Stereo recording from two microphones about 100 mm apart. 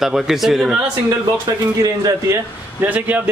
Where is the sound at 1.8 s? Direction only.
35° right (ahead or behind).